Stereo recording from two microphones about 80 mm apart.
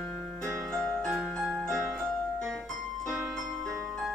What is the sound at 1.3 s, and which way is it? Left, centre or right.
Music, centre.